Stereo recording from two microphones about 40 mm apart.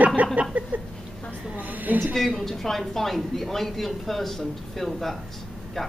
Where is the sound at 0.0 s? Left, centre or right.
Right.